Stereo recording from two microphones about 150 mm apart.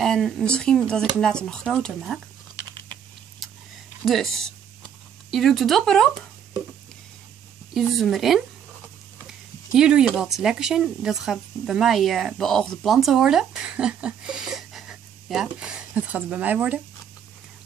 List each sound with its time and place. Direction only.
0.0 s speech: 5° left (ahead or behind)
4.0 s speech: centre (ahead or behind)
5.3 s speech: centre (ahead or behind)
7.7 s speech: centre (ahead or behind)
9.7 s speech: 5° right (ahead or behind)